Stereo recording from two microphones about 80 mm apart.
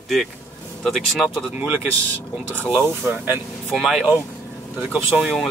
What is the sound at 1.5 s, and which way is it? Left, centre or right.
Speech, centre.